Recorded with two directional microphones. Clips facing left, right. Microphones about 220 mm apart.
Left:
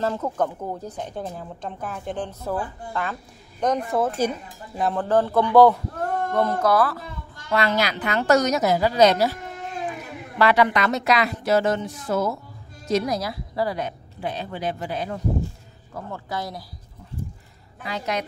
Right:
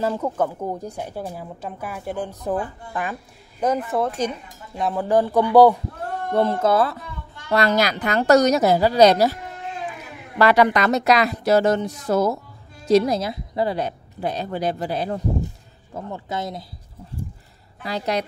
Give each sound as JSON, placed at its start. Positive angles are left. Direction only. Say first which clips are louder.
{"t": 0.0, "sound": "a woman's voice", "louder": "right 2 dB", "side_deg": -10}
{"t": 3.6, "sound": "a woman's voice", "louder": "right 1 dB", "side_deg": -5}
{"t": 4.9, "sound": "a woman's voice", "louder": "right 2 dB", "side_deg": -15}
{"t": 6.3, "sound": "speech", "louder": "right 3 dB", "side_deg": -25}
{"t": 7.4, "sound": "speech", "louder": "right 3 dB", "side_deg": -40}
{"t": 10.4, "sound": "speech", "louder": "right 3 dB", "side_deg": -40}
{"t": 15.9, "sound": "speech", "louder": "right 2 dB", "side_deg": -20}
{"t": 17.8, "sound": "speech", "louder": "right 3 dB", "side_deg": -35}